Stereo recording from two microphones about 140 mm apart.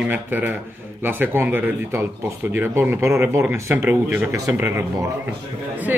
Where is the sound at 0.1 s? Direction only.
15° right (ahead or behind).